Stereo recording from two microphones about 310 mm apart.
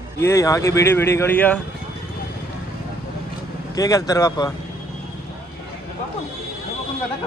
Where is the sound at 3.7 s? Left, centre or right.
Centre.